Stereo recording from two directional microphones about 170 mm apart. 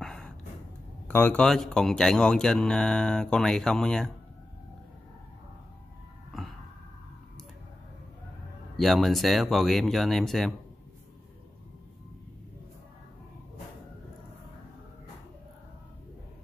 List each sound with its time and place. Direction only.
0.0 s a sound: 5° left (ahead or behind)
1.0 s speech: 10° left (ahead or behind)
6.3 s music: centre (ahead or behind)
8.7 s speech: centre (ahead or behind)